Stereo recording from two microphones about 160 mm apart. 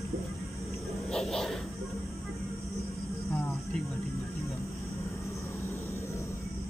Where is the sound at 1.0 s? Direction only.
5° left (ahead or behind).